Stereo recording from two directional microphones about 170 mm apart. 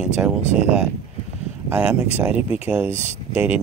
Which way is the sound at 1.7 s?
5° right (ahead or behind).